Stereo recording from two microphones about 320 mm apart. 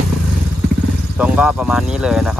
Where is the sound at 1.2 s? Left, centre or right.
Centre.